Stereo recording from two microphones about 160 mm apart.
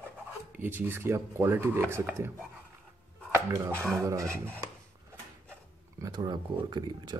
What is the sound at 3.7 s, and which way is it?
Filing, 10° left (ahead or behind).